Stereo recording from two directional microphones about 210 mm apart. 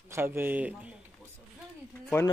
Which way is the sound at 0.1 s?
10° right (ahead or behind).